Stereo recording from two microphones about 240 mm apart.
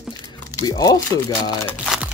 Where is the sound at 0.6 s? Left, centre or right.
Centre.